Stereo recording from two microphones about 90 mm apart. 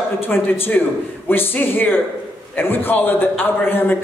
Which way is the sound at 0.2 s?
25° left (ahead or behind).